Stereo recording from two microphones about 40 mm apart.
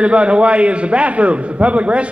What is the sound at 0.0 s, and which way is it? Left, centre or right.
A man's voice, right.